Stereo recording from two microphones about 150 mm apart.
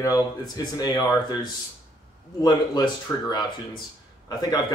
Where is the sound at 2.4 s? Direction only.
30° left (ahead or behind).